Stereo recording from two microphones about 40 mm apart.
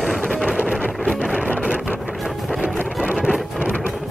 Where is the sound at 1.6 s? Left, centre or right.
Right.